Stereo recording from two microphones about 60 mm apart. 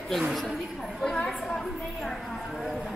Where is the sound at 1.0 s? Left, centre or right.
Centre.